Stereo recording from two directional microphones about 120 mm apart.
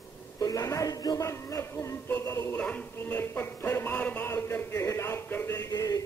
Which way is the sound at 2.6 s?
10° left (ahead or behind).